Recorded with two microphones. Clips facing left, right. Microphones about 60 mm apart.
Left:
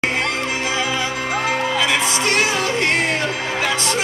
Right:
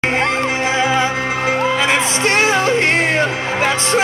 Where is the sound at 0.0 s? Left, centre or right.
Right.